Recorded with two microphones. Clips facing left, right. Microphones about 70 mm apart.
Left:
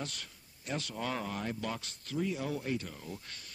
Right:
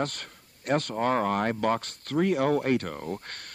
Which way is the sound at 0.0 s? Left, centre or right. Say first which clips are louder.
Right 11 dB; right.